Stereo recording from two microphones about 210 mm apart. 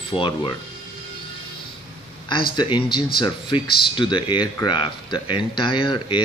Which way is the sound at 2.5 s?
20° left (ahead or behind).